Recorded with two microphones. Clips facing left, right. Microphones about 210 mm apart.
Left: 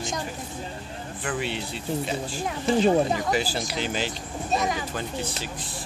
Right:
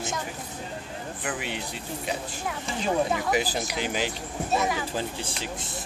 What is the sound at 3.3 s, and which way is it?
Speech, 15° right (ahead or behind).